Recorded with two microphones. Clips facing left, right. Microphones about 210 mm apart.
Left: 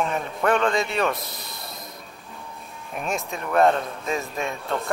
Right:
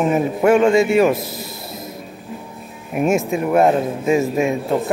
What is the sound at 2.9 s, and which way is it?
Speech, 10° right (ahead or behind).